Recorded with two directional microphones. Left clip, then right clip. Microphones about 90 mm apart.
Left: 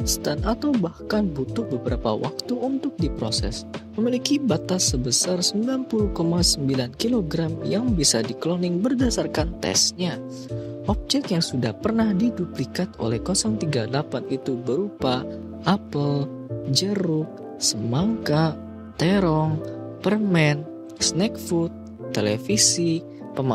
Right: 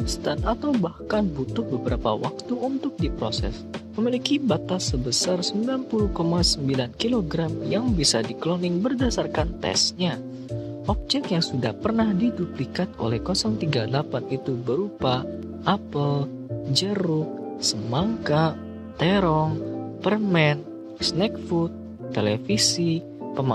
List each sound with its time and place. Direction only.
0.0 s speech: 30° left (ahead or behind)